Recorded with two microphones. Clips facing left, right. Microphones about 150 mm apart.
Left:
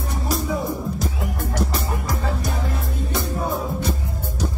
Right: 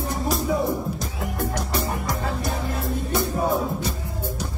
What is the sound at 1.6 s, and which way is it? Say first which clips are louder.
Music: left 1 dB; 5° left (ahead or behind).